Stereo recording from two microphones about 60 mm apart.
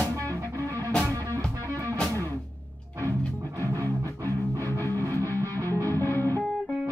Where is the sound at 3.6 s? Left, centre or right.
Right.